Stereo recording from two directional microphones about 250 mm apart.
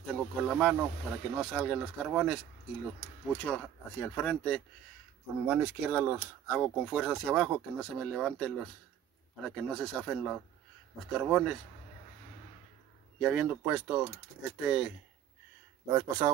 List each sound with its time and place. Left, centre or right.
0.0 s speech: centre
9.6 s speech: centre
13.2 s speech: centre
15.9 s speech: centre